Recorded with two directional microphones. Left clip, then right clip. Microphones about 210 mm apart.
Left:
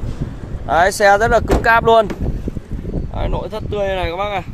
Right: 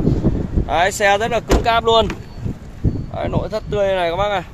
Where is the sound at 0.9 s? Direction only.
20° left (ahead or behind).